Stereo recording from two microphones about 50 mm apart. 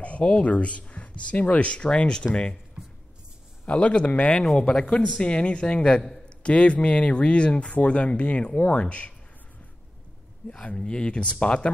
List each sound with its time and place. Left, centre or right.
0.0 s speech: left
3.6 s speech: left
4.6 s speech: centre
10.4 s speech: left
10.8 s speech: centre